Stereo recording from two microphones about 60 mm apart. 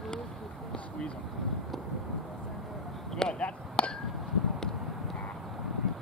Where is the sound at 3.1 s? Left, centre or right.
Centre.